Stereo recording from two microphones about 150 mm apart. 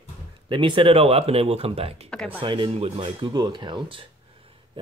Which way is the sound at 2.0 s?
10° left (ahead or behind).